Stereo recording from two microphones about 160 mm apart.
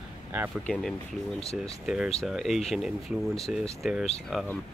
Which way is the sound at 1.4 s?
40° left (ahead or behind).